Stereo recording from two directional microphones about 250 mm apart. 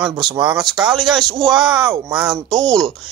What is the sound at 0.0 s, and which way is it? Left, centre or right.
Speech, centre.